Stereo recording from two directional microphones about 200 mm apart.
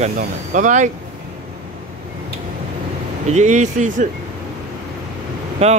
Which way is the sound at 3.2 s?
35° right (ahead or behind).